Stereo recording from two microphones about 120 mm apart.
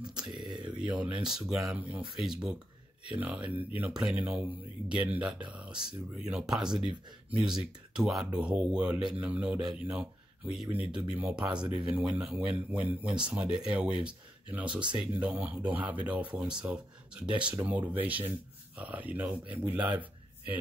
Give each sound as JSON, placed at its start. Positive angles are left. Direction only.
{"t": 0.2, "sound": "speech", "side_deg": -35}
{"t": 0.7, "sound": "speech", "side_deg": -10}